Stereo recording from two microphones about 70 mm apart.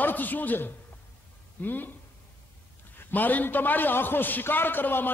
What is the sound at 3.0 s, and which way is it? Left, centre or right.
A man's voice, left.